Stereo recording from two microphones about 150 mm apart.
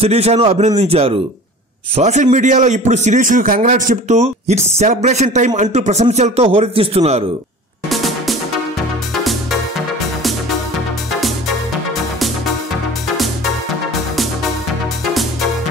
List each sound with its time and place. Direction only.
0.0 s a man's voice: 45° right (ahead or behind)
7.9 s music: centre (ahead or behind)
11.1 s music: centre (ahead or behind)